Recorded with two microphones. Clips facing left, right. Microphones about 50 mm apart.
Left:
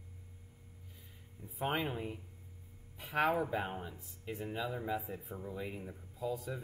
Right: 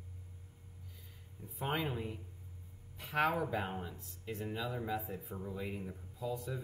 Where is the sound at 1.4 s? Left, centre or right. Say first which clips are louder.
Left 2 dB; centre.